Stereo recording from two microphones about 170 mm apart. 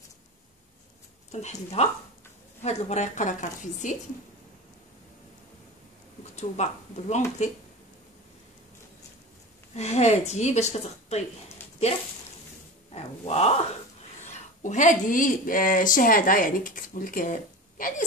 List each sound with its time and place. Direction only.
1.3 s a woman's voice: 40° left (ahead or behind)
6.3 s a woman's voice: 40° left (ahead or behind)
9.8 s speech: 40° left (ahead or behind)
12.9 s grunt: 40° left (ahead or behind)
14.2 s speech: 45° left (ahead or behind)